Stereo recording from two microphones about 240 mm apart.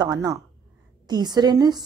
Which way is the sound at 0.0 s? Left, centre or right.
Centre.